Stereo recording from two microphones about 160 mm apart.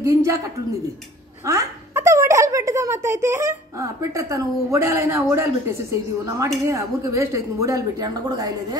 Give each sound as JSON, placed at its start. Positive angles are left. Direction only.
{"t": 0.0, "sound": "speech", "side_deg": -20}
{"t": 1.4, "sound": "speech", "side_deg": -20}